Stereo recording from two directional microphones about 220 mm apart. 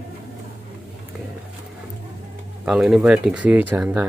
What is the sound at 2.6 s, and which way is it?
Speech, 5° right (ahead or behind).